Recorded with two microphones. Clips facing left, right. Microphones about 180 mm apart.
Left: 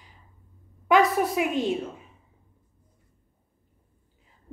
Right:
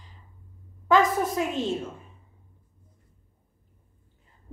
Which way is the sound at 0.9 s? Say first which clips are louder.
Left 1 dB; 10° left (ahead or behind).